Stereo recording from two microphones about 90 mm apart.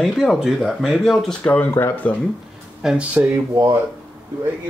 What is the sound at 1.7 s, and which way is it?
Speech, 25° left (ahead or behind).